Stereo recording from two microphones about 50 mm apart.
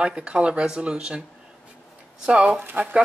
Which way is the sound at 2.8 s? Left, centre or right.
Right.